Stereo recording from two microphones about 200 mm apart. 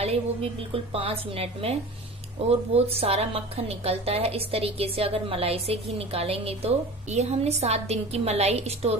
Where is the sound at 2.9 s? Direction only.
30° right (ahead or behind).